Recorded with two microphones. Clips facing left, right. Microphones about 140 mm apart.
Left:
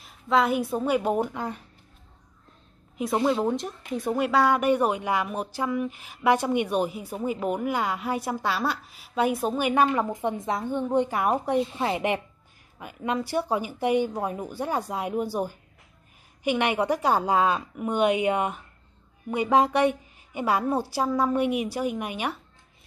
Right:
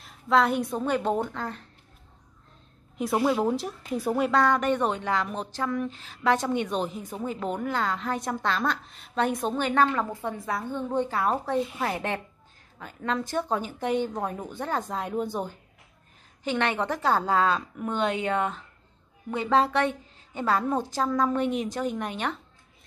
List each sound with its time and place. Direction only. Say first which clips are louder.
0.0 s speech: even; centre (ahead or behind)
3.3 s a woman's voice: even; centre (ahead or behind)